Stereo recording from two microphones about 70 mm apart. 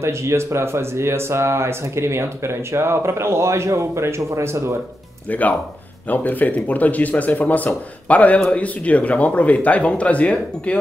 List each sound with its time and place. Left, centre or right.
0.0 s speech: right
5.3 s speech: left